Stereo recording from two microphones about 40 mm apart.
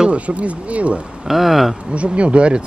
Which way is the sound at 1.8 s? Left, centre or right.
Right.